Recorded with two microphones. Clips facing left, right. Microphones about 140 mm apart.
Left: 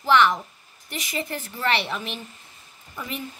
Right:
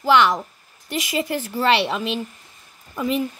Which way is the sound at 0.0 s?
90° right.